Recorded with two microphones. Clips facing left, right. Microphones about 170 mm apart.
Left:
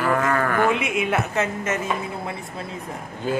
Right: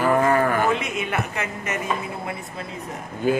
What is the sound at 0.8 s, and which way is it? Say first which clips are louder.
Speech: left 4 dB; 5° left (ahead or behind).